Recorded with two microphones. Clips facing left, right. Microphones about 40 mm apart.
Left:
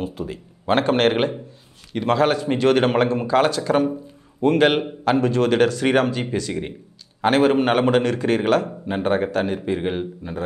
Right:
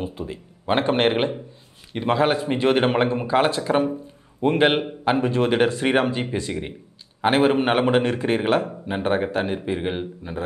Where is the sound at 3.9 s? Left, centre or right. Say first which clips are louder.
Left 2 dB; centre.